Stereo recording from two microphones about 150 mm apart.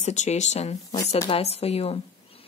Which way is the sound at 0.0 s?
50° left (ahead or behind).